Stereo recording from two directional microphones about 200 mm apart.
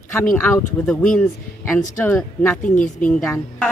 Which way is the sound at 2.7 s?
40° left (ahead or behind).